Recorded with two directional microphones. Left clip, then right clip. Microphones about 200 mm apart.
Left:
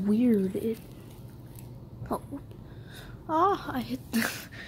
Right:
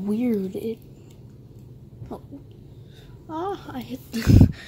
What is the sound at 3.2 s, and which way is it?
A child's voice, 15° left (ahead or behind).